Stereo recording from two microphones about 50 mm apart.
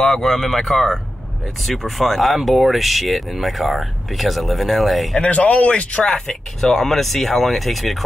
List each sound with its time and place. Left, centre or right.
0.0 s speech: centre
5.2 s speech: left
6.6 s speech: centre